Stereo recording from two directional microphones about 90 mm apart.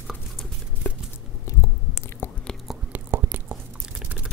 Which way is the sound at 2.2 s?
25° left (ahead or behind).